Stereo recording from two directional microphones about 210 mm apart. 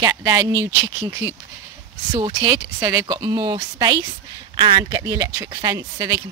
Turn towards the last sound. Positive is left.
turn(degrees=-15)  # may be behind; listen again after turning